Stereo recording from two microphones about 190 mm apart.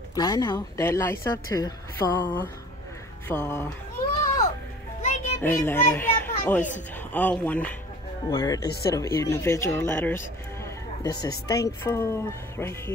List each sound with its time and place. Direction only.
0.1 s a woman's voice: 20° left (ahead or behind)
3.3 s speech: 10° left (ahead or behind)
5.0 s music: 35° left (ahead or behind)
5.4 s speech: 10° left (ahead or behind)
8.3 s a woman's voice: 20° left (ahead or behind)